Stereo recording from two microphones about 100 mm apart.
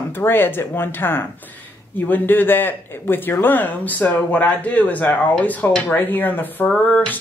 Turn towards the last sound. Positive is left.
turn(degrees=15)  # may be behind; listen again after turning